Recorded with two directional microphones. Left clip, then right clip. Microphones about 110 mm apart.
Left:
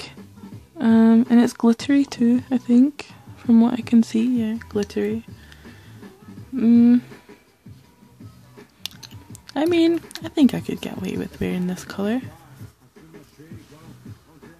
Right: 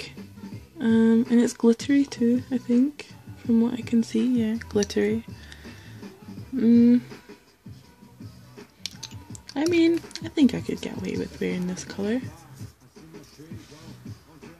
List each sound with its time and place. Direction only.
0.7 s speech: 40° left (ahead or behind)
4.2 s speech: 25° left (ahead or behind)
6.7 s speech: 55° left (ahead or behind)
9.3 s speech: 60° left (ahead or behind)